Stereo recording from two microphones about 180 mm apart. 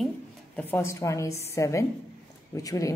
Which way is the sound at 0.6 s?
10° left (ahead or behind).